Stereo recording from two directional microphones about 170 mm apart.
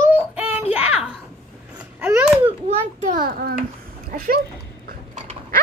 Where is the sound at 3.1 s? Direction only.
60° right (ahead or behind).